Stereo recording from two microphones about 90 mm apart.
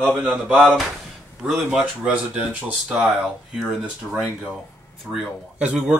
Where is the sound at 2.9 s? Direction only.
10° right (ahead or behind).